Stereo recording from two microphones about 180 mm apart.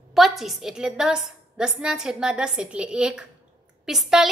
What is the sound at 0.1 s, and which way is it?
A woman's voice, centre (ahead or behind).